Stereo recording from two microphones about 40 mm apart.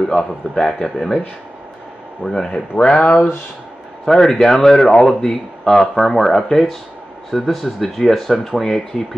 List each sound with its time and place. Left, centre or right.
0.1 s speech: centre
2.2 s speech: centre
2.8 s speech: left
4.0 s speech: centre